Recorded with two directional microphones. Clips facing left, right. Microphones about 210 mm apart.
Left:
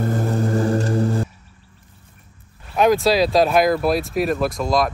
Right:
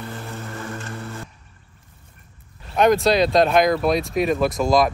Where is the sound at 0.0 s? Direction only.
45° left (ahead or behind).